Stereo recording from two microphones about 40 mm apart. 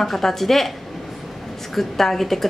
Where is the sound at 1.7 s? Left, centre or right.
Centre.